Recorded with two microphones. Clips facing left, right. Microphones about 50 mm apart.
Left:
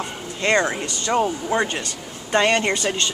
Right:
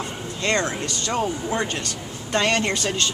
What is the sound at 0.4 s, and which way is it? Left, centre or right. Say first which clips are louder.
Speech: left 4 dB; centre.